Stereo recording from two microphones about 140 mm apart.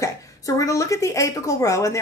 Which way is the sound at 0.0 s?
25° left (ahead or behind).